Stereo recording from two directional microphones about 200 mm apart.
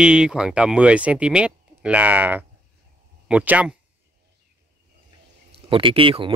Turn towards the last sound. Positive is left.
turn(degrees=-25)  # may be behind; listen again after turning